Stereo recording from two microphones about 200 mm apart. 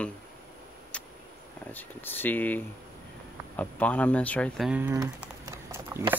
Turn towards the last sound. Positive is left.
turn(degrees=-10)  # may be behind; listen again after turning